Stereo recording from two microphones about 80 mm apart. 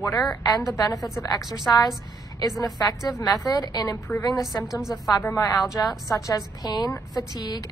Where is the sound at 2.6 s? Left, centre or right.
Left.